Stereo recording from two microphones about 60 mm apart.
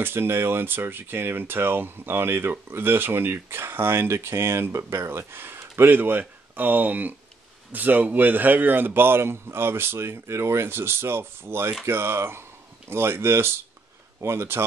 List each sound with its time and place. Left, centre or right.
0.0 s speech: right